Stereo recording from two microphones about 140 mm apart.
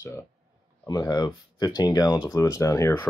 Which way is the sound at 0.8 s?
30° left (ahead or behind).